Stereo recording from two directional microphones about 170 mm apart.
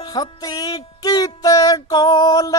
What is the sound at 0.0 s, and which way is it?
Music, 20° left (ahead or behind).